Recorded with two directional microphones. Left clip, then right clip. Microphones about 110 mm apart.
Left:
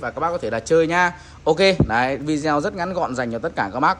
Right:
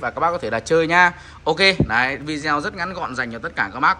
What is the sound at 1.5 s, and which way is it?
Speech, 35° left (ahead or behind).